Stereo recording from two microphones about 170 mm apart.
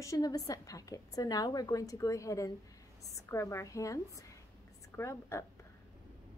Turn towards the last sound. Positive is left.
turn(degrees=15)  # may be behind; listen again after turning